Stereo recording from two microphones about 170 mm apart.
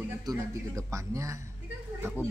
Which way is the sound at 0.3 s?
20° right (ahead or behind).